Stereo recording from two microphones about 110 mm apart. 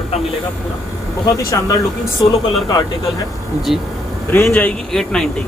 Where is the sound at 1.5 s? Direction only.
30° left (ahead or behind).